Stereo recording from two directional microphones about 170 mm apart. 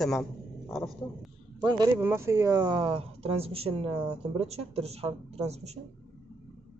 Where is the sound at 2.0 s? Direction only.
15° right (ahead or behind); by 5.8 s 40° right (ahead or behind).